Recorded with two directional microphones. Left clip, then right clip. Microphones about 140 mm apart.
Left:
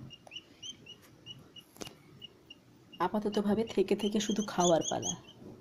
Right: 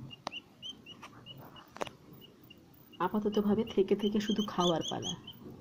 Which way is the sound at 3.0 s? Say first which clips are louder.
Even; 20° left (ahead or behind).